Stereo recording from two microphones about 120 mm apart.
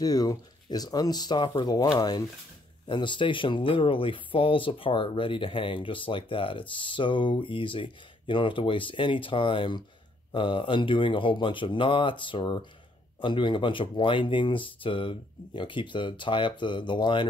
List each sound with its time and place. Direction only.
0.0 s speech: 30° left (ahead or behind)